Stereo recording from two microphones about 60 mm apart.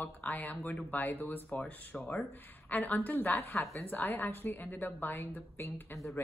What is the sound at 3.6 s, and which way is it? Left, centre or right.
Speech, left.